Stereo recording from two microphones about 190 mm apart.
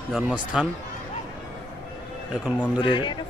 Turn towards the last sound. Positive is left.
turn(degrees=25)  # may be behind; listen again after turning